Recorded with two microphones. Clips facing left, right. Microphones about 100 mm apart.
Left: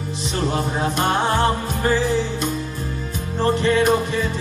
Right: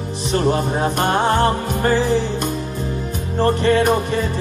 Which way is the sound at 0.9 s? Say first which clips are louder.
Right 2 dB; 50° right (ahead or behind).